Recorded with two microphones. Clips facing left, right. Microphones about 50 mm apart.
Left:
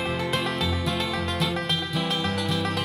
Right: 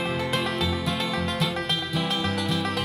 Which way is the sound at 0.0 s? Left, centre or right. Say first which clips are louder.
Even; centre.